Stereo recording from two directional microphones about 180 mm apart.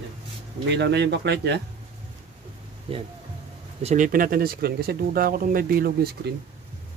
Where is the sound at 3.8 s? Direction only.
45° right (ahead or behind).